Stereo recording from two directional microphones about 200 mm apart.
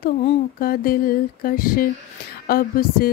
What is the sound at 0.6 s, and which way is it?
Music, 45° left (ahead or behind).